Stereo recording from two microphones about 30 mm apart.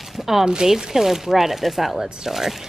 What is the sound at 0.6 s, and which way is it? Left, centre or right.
Speech, centre.